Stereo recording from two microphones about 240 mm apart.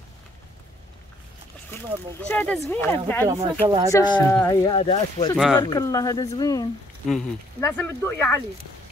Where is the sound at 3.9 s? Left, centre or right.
Centre.